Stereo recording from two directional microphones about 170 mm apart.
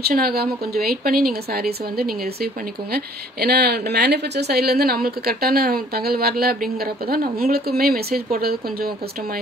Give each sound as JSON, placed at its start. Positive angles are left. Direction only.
{"t": 0.1, "sound": "speech", "side_deg": -65}